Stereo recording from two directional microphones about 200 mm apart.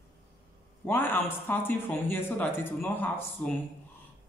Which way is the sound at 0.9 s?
10° left (ahead or behind).